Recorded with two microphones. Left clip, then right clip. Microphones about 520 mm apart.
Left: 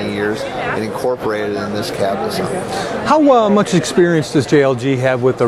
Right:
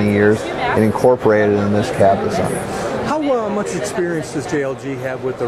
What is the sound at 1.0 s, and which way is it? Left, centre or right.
Speech, right.